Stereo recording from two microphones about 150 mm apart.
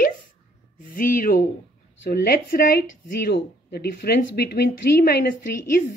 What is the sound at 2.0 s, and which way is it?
A woman's voice, 85° left.